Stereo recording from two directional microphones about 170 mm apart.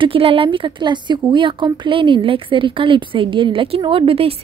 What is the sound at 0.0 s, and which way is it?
A woman's voice, 30° right (ahead or behind).